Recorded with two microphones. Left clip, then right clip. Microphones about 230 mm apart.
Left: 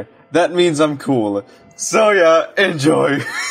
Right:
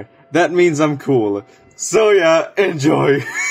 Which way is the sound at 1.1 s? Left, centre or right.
Centre.